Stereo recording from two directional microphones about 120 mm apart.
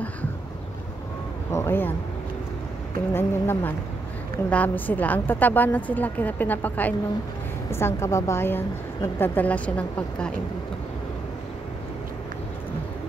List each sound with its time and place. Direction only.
1.5 s a woman's voice: 20° left (ahead or behind)
3.1 s a woman's voice: 20° left (ahead or behind)